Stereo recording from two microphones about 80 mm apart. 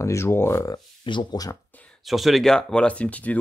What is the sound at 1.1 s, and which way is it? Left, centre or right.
Speech, left.